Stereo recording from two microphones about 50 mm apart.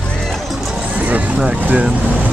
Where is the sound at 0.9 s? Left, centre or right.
Right.